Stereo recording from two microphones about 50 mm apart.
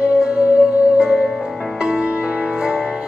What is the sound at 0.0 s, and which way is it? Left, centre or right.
Music, right.